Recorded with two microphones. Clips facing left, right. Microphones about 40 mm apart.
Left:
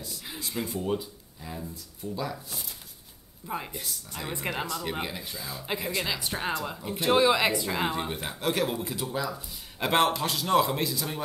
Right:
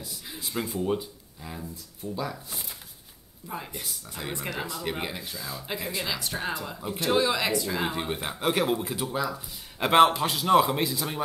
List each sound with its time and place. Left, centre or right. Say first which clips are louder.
0.4 s speech: right 2 dB; centre
3.4 s speech: left 2 dB; centre
3.7 s a man's voice: even; centre
4.3 s speech: left 1 dB; centre
4.6 s a man's voice: even; centre
7.9 s a man's voice: right 1 dB; centre